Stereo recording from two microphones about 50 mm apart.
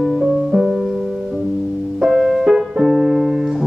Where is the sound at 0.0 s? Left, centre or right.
Centre.